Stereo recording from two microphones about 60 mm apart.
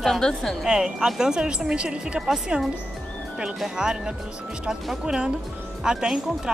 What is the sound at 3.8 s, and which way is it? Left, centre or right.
Speech, centre.